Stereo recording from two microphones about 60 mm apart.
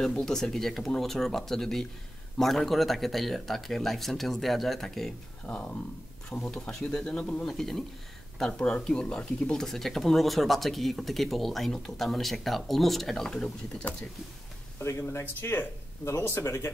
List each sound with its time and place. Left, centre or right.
0.0 s speech: centre
7.4 s speech: centre
14.8 s speech: left